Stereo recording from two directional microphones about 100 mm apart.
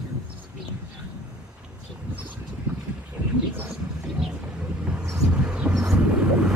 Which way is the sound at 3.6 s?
5° right (ahead or behind).